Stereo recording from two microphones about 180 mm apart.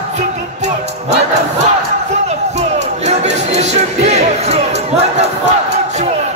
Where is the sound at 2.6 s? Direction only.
40° right (ahead or behind).